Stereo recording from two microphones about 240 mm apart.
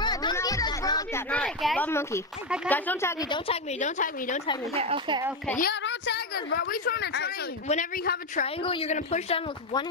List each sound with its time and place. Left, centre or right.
0.0 s a sound: centre
1.9 s a woman's voice: centre
3.8 s a woman's voice: left
4.7 s speech: right
5.6 s a woman's voice: left
7.6 s a woman's voice: left
8.6 s speech: left